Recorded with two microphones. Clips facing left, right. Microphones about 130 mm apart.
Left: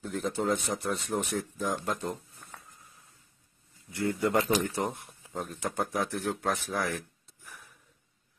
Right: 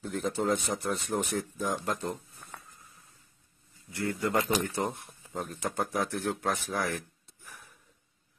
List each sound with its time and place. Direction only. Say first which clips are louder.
0.0 s speech: even; centre (ahead or behind)
3.9 s speech: left 3 dB; 20° left (ahead or behind)
4.3 s speech: even; centre (ahead or behind)